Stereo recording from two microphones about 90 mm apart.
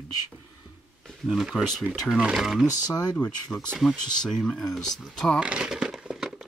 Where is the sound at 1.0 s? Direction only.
Centre (ahead or behind).